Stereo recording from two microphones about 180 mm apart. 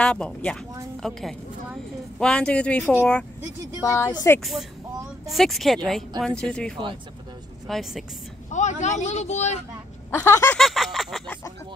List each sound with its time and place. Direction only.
0.0 s speech: 5° left (ahead or behind)
3.8 s speech: 15° left (ahead or behind)
4.4 s speech: centre (ahead or behind)
8.5 s speech: 40° left (ahead or behind)
10.1 s speech: 15° left (ahead or behind)
10.6 s a sound: centre (ahead or behind)